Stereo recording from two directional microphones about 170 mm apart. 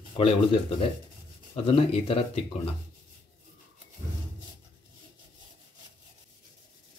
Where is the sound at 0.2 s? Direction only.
35° left (ahead or behind).